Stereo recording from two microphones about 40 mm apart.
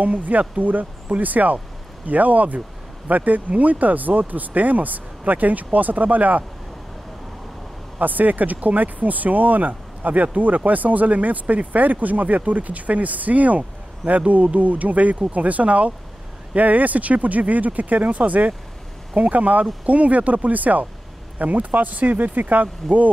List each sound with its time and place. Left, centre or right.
0.0 s speech: right
8.0 s speech: right